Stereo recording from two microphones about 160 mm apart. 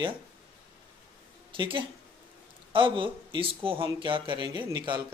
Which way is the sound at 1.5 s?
30° right (ahead or behind).